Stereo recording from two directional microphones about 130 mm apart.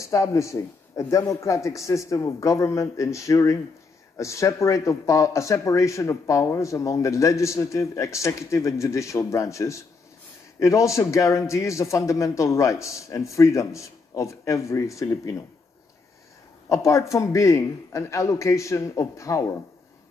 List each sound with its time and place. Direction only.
0.0 s speech: 25° left (ahead or behind)
16.6 s speech: 25° left (ahead or behind)